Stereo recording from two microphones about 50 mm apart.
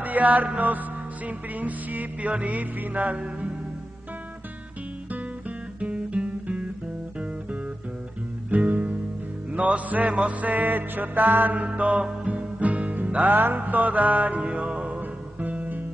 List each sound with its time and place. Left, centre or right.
0.0 s music: right
5.8 s music: right
8.5 s music: right